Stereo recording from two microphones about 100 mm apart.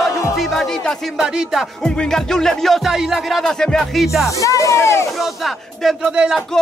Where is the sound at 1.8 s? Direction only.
5° left (ahead or behind).